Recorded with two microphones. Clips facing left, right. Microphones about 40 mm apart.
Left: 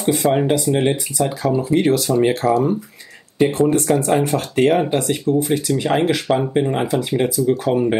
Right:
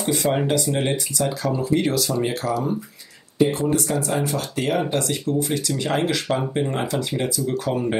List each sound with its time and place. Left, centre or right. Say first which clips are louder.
0.2 s speech: left 4 dB; centre